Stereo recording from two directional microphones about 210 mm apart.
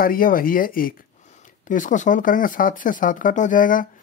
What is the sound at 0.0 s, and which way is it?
Speech, 40° left (ahead or behind).